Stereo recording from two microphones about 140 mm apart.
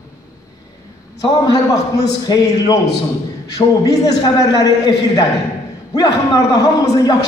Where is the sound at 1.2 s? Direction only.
25° left (ahead or behind).